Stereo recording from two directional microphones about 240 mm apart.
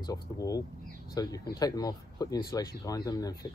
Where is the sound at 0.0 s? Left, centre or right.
Centre.